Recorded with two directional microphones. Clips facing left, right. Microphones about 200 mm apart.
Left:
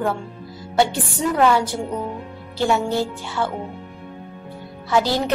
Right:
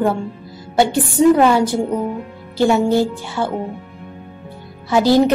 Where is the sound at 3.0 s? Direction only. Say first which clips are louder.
Right 5 dB; 15° right (ahead or behind).